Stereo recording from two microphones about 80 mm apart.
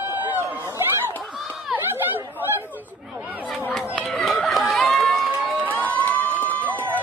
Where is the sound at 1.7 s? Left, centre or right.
Centre.